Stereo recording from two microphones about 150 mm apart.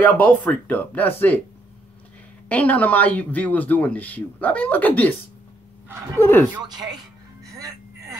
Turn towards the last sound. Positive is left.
turn(degrees=-20)  # may be behind; listen again after turning